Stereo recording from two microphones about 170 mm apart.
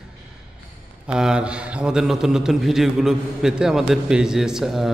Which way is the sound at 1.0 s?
5° right (ahead or behind).